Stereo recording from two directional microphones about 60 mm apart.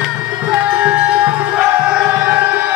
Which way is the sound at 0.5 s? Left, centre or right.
Right.